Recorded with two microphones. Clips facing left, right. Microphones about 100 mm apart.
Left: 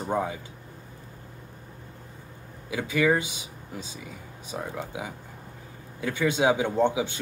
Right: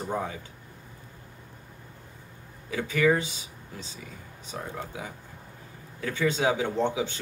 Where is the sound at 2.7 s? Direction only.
10° left (ahead or behind).